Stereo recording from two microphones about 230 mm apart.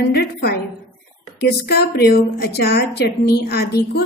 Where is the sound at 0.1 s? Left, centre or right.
Left.